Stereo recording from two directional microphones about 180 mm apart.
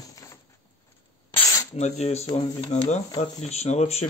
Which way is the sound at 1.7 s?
40° left (ahead or behind).